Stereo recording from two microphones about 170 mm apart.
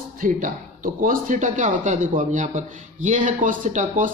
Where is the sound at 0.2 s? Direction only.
50° right (ahead or behind).